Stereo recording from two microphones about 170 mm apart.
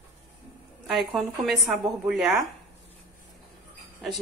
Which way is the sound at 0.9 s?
Centre (ahead or behind).